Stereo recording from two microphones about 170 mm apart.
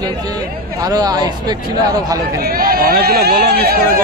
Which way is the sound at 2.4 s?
60° right (ahead or behind).